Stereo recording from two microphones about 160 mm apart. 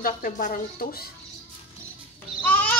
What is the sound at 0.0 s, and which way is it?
Speech, 60° left (ahead or behind).